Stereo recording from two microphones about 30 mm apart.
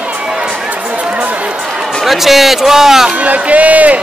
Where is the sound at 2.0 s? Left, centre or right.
Centre.